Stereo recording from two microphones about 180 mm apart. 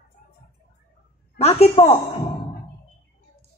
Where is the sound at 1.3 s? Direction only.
35° left (ahead or behind).